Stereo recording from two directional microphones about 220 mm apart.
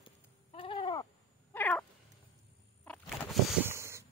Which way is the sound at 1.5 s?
5° left (ahead or behind).